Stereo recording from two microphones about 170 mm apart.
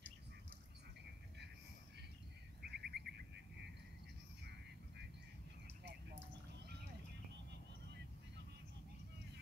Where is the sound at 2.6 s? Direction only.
70° right (ahead or behind).